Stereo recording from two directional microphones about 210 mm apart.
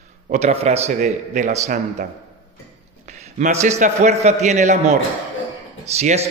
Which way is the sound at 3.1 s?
35° right (ahead or behind).